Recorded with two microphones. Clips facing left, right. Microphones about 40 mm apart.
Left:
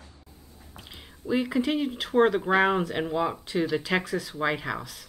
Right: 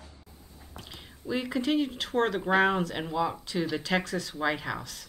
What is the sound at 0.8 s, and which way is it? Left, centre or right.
Speech, centre.